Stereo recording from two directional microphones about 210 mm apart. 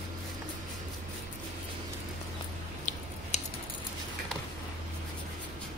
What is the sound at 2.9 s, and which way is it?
Scissors, 35° left (ahead or behind).